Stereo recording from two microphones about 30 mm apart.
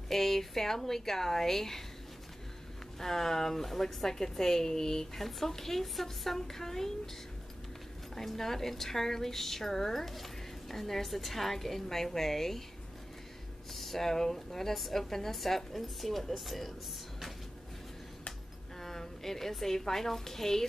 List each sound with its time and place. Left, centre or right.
0.1 s a woman's voice: centre
3.0 s a woman's voice: centre
5.1 s a woman's voice: centre
8.1 s a woman's voice: centre
13.7 s a woman's voice: centre
18.8 s a sound: centre
19.6 s a woman's voice: centre